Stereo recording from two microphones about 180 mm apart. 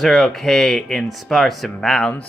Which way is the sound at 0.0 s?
Centre (ahead or behind).